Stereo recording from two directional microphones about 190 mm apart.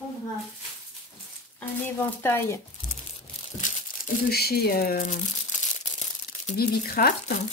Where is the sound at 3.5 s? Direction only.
50° left (ahead or behind).